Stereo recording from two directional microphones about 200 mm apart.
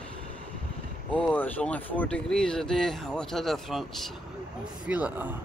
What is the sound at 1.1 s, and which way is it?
Speech, 5° left (ahead or behind).